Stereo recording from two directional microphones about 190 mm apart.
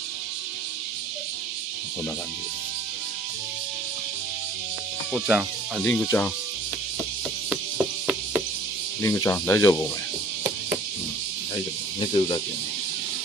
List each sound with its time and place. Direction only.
5.1 s speech: 5° right (ahead or behind)
6.0 s speech: 10° left (ahead or behind)
7.4 s insect: 5° right (ahead or behind)
9.0 s speech: 15° left (ahead or behind)
12.0 s speech: 25° left (ahead or behind)